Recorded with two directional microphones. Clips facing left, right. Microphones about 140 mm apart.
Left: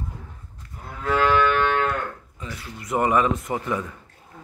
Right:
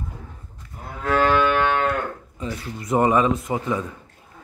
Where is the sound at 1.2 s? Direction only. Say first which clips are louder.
Right 1 dB; 45° right (ahead or behind).